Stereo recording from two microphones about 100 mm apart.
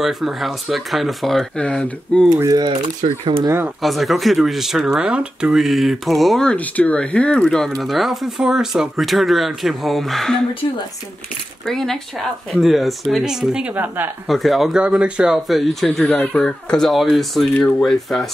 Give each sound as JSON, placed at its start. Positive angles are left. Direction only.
{"t": 0.0, "sound": "speech", "side_deg": 0}
{"t": 2.3, "sound": "speech", "side_deg": -35}
{"t": 3.8, "sound": "speech", "side_deg": 0}
{"t": 6.5, "sound": "speech", "side_deg": 15}
{"t": 11.6, "sound": "speech", "side_deg": 5}
{"t": 13.7, "sound": "speech", "side_deg": -20}
{"t": 14.2, "sound": "speech", "side_deg": 0}
{"t": 16.0, "sound": "speech", "side_deg": 15}
{"t": 17.6, "sound": "speech", "side_deg": 15}